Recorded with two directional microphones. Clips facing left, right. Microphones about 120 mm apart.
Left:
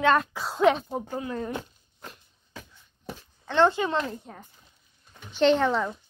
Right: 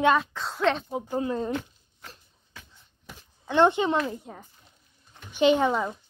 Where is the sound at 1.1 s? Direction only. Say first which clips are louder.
Right 6 dB; 20° right (ahead or behind).